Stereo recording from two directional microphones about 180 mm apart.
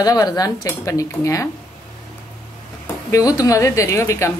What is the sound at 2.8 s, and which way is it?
A woman's voice, 20° left (ahead or behind).